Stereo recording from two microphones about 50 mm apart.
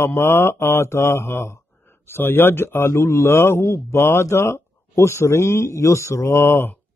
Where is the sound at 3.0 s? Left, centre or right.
Left.